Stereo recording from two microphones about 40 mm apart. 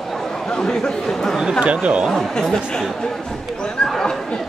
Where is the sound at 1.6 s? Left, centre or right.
Right.